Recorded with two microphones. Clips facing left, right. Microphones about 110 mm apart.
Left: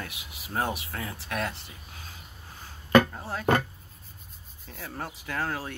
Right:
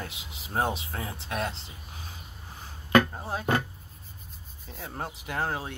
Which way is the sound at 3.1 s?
20° right (ahead or behind).